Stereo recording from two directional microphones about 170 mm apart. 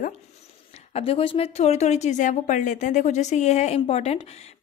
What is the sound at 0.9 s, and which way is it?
A woman's voice, 35° left (ahead or behind).